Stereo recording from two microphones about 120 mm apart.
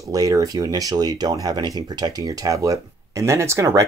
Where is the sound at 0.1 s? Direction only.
30° right (ahead or behind).